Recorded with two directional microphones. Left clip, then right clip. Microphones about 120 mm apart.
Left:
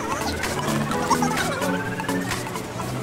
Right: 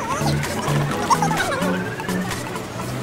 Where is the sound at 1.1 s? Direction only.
20° right (ahead or behind).